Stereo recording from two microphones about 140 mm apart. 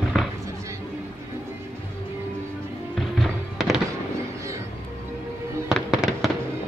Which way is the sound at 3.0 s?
Centre (ahead or behind).